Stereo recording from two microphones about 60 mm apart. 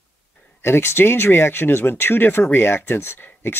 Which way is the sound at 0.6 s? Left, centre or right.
Left.